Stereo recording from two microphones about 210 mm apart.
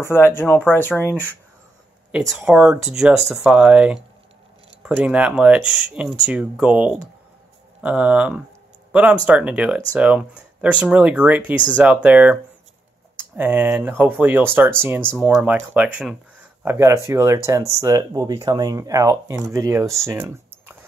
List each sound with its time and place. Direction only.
0.0 s speech: 10° left (ahead or behind)
2.1 s speech: 5° right (ahead or behind)